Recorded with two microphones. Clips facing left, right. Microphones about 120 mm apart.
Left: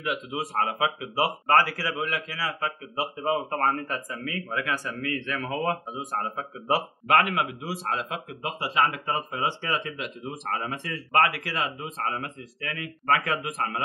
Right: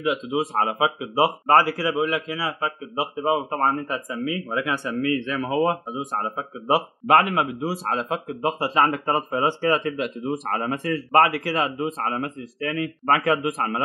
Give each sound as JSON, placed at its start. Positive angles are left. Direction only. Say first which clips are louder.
{"t": 0.0, "sound": "speech", "louder": "right 7 dB", "side_deg": -25}